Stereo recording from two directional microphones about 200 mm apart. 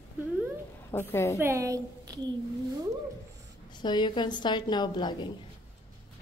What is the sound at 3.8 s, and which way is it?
A woman's voice, 20° left (ahead or behind).